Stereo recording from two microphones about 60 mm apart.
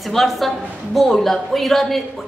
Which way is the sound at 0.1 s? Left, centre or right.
Centre.